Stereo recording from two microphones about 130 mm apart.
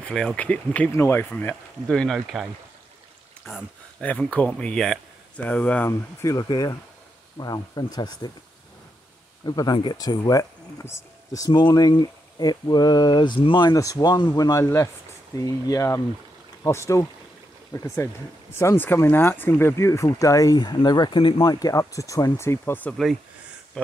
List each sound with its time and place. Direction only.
0.0 s speech: 5° left (ahead or behind)
3.4 s speech: 10° left (ahead or behind)
5.9 s speech: 25° left (ahead or behind)
9.4 s speech: 30° left (ahead or behind)
13.7 s speech: 25° left (ahead or behind)